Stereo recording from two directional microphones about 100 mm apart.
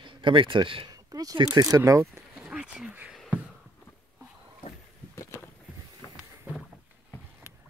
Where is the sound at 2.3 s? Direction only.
10° right (ahead or behind).